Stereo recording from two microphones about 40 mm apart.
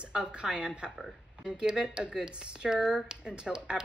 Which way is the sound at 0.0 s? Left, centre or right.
Right.